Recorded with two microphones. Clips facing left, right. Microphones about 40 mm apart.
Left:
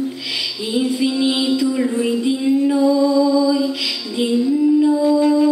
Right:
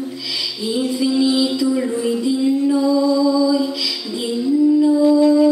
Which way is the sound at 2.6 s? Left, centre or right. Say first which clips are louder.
Left 1 dB; left.